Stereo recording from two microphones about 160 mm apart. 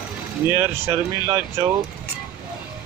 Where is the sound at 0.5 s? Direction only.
15° right (ahead or behind).